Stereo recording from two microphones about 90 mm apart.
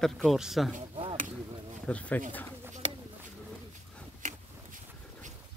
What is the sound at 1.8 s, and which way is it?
Speech, 15° left (ahead or behind).